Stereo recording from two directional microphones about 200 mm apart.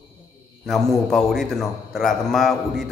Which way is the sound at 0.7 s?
Centre (ahead or behind).